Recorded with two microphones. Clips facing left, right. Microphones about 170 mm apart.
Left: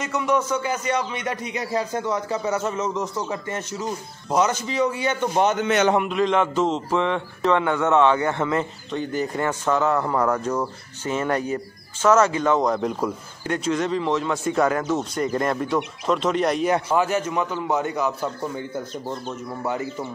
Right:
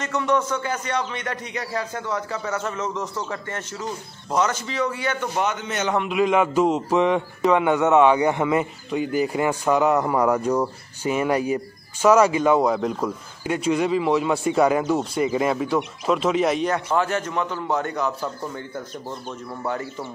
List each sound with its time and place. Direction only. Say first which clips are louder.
0.1 s a man's voice: even; 10° left (ahead or behind)
5.6 s a man's voice: left 8 dB; 75° left (ahead or behind)
6.0 s a man's voice: right 1 dB; 10° right (ahead or behind)
16.9 s a man's voice: left 1 dB; 10° left (ahead or behind)
19.6 s a man's voice: left 1 dB; 15° left (ahead or behind)